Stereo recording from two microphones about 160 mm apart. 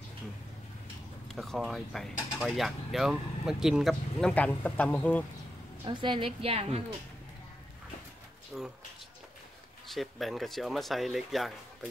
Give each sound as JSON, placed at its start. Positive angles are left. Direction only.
{"t": 1.3, "sound": "speech", "side_deg": 0}
{"t": 5.9, "sound": "a woman's voice", "side_deg": -30}
{"t": 8.5, "sound": "speech", "side_deg": 0}
{"t": 9.8, "sound": "speech", "side_deg": 0}